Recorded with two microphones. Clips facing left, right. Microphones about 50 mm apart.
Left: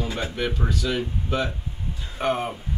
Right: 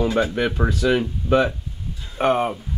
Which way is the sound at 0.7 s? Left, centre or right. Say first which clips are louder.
Right 6 dB; right.